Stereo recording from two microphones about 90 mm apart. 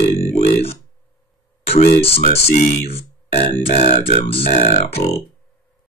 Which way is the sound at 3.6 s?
90° left.